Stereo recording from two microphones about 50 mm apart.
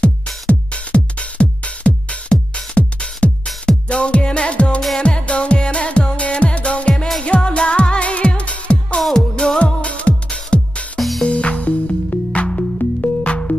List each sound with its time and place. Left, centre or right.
0.0 s music: left
9.1 s music: centre
11.0 s music: centre
11.2 s music: left